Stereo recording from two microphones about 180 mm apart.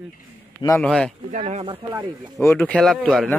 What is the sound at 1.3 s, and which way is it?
Speech, 40° right (ahead or behind).